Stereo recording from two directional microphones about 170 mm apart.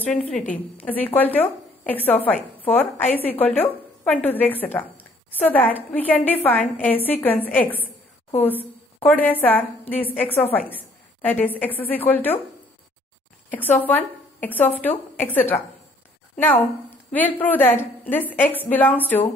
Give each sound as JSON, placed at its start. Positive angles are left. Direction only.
{"t": 0.5, "sound": "a woman's voice", "side_deg": 10}
{"t": 13.5, "sound": "a woman's voice", "side_deg": 10}
{"t": 17.1, "sound": "speech", "side_deg": 10}